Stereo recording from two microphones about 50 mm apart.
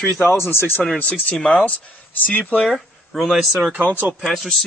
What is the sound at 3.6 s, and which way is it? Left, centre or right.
Speech, right.